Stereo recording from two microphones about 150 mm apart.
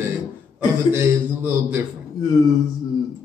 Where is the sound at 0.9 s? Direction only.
15° right (ahead or behind).